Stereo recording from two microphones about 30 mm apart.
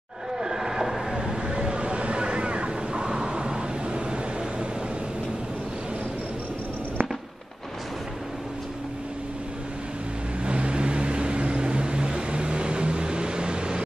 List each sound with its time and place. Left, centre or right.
0.4 s vehicle: centre
1.1 s a sound: right
10.4 s vehicle: right